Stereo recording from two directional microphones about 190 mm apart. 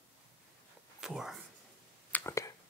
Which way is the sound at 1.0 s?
Centre (ahead or behind).